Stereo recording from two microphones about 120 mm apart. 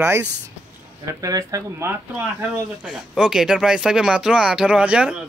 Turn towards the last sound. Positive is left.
turn(degrees=-10)  # may be behind; listen again after turning